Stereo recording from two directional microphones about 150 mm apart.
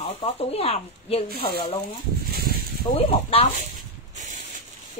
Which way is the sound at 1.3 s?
90° left.